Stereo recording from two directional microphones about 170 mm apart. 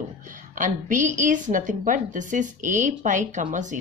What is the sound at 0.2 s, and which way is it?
A woman's voice, 50° right (ahead or behind).